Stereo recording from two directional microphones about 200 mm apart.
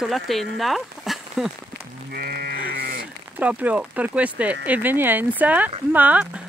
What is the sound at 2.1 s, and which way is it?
Sheep, 50° right (ahead or behind).